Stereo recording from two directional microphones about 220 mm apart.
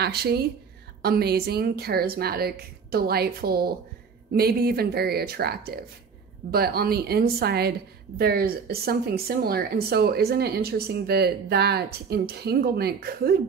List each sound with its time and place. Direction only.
0.0 s speech: 45° right (ahead or behind)